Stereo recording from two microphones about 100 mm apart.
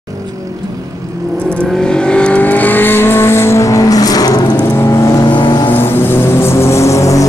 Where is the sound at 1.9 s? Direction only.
10° left (ahead or behind); by 4.5 s 40° left (ahead or behind).